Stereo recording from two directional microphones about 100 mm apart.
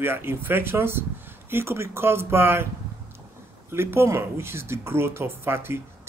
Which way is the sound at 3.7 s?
25° right (ahead or behind).